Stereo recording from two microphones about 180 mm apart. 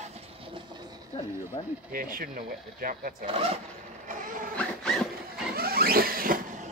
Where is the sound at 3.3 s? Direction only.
30° right (ahead or behind).